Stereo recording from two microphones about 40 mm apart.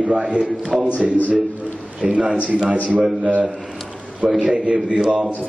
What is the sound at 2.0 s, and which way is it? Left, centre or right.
Speech, centre.